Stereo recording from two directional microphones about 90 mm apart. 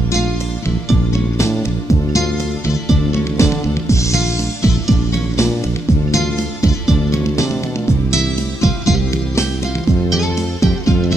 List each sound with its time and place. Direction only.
3.3 s music: 35° left (ahead or behind)